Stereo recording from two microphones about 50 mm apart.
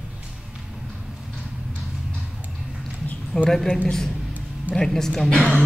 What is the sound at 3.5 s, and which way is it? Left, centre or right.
Speech, centre.